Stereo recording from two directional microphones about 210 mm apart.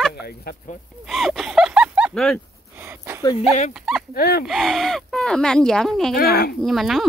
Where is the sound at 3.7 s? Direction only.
Centre (ahead or behind).